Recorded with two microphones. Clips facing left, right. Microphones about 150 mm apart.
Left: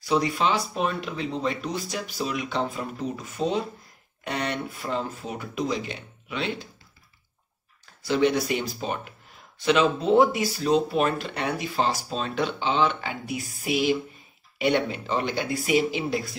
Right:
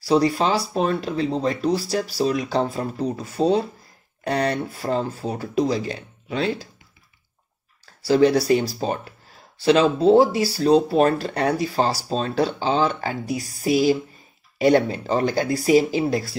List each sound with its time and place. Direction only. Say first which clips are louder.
0.0 s speech: right 5 dB; 35° right (ahead or behind)
7.8 s speech: right 6 dB; 35° right (ahead or behind)